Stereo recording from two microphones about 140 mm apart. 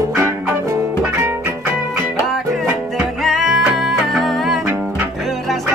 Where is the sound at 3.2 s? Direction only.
Centre (ahead or behind).